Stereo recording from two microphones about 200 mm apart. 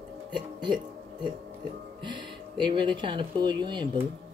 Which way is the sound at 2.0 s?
25° right (ahead or behind).